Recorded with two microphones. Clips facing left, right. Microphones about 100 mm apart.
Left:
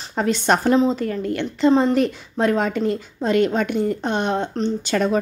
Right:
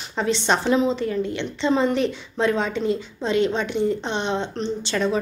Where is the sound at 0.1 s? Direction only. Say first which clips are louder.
Left 3 dB; 45° left (ahead or behind).